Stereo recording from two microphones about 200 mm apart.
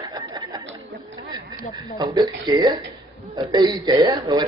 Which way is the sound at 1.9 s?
20° right (ahead or behind).